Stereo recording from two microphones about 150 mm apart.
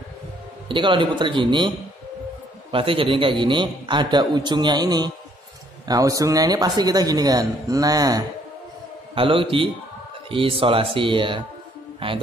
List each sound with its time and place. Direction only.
0.7 s a man's voice: 35° right (ahead or behind)
2.7 s a man's voice: 35° right (ahead or behind)
9.1 s a man's voice: 35° right (ahead or behind)